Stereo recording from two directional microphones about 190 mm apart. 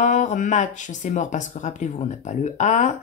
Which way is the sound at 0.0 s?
40° left (ahead or behind).